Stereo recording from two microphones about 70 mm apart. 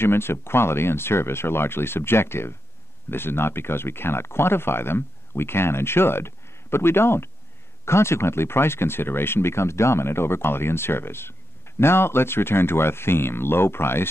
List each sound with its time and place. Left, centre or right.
0.0 s speech: left